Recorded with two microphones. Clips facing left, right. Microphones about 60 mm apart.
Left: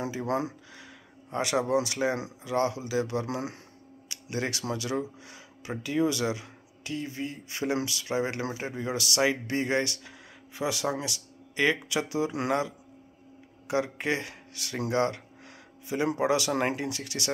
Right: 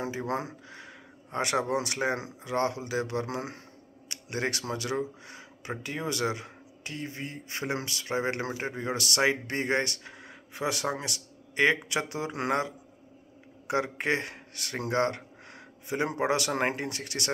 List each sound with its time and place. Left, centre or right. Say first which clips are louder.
0.3 s speech: left 3 dB; right
13.9 s speech: right 1 dB; right